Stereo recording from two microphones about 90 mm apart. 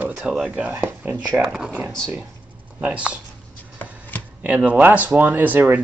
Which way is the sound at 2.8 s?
15° right (ahead or behind).